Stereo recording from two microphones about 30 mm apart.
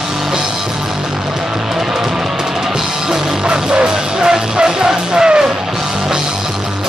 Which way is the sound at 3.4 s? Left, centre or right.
Right.